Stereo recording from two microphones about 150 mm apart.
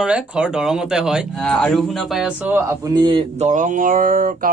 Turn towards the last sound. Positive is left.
turn(degrees=-65)  # may be behind; listen again after turning